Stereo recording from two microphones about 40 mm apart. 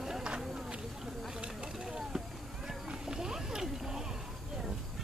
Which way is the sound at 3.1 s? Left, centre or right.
Centre.